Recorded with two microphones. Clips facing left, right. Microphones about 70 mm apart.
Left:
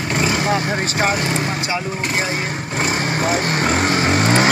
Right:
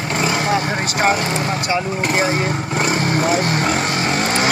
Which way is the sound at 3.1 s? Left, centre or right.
Left.